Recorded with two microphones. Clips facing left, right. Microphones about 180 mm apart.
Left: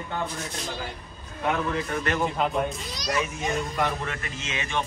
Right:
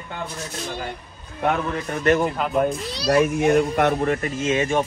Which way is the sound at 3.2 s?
60° right (ahead or behind).